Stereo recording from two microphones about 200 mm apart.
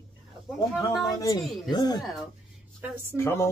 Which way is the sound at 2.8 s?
10° right (ahead or behind).